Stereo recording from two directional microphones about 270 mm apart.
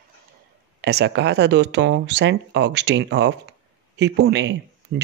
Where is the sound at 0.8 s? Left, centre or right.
Right.